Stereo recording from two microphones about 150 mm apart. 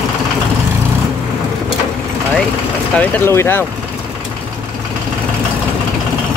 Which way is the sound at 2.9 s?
10° left (ahead or behind).